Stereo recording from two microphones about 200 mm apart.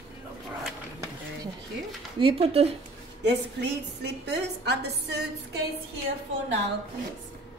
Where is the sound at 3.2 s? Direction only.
60° right (ahead or behind).